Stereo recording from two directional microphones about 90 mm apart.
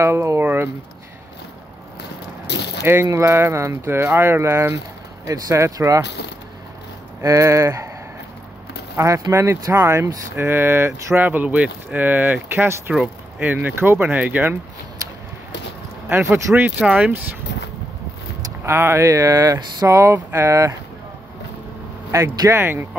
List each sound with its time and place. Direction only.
0.0 s speech: 30° right (ahead or behind)
2.8 s speech: 30° right (ahead or behind)
7.2 s speech: 35° right (ahead or behind)
8.9 s speech: 35° right (ahead or behind)
16.1 s speech: 30° right (ahead or behind)
16.5 s speech: 15° right (ahead or behind)
18.6 s speech: 30° right (ahead or behind)
22.1 s speech: 40° right (ahead or behind)
22.5 s speech: 25° right (ahead or behind)